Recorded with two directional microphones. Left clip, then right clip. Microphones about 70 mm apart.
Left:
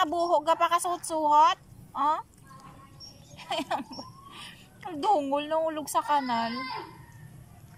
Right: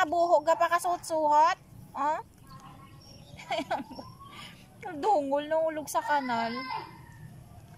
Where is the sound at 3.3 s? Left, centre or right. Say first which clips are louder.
Left 1 dB; centre.